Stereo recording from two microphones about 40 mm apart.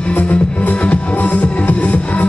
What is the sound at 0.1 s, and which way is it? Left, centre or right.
Music, left.